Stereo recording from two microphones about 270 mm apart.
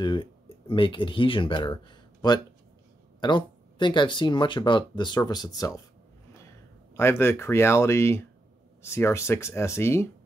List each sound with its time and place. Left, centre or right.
0.0 s speech: centre
7.0 s speech: centre